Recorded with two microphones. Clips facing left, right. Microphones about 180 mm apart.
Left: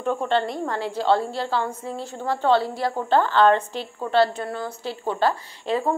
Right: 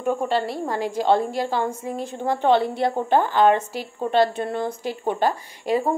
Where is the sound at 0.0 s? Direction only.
10° right (ahead or behind).